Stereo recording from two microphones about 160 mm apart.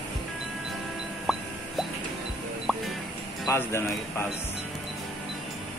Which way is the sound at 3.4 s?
15° left (ahead or behind).